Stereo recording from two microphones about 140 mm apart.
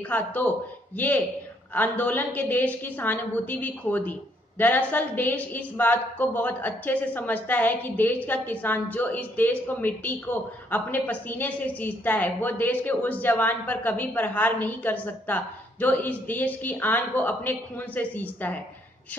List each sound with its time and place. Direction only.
0.1 s a woman's voice: 10° left (ahead or behind)